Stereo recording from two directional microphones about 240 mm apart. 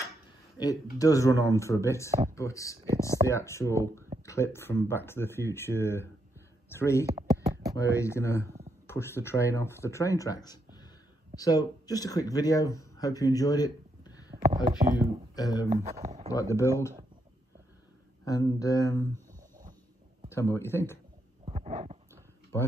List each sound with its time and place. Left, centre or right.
0.6 s speech: centre
7.2 s a sound: centre
7.7 s speech: centre
14.5 s speech: centre
15.3 s speech: centre
15.7 s speech: right
16.3 s speech: centre
18.2 s speech: centre
20.2 s speech: centre
21.5 s a sound: right